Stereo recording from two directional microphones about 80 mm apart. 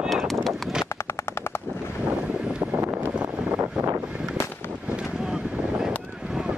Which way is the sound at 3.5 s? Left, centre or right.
Right.